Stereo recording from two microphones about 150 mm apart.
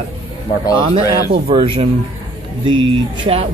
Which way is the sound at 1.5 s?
35° right (ahead or behind).